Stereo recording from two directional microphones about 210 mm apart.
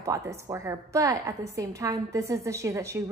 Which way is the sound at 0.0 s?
15° right (ahead or behind).